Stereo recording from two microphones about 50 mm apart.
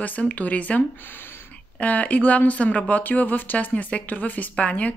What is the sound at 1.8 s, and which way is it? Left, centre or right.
A woman's voice, left.